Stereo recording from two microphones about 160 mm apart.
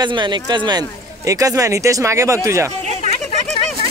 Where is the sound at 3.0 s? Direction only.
45° left (ahead or behind).